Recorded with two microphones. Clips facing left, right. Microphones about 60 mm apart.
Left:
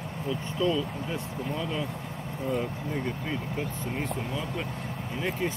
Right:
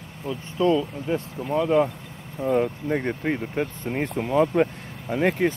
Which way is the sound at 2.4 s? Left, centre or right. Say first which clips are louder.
Right 8 dB; right.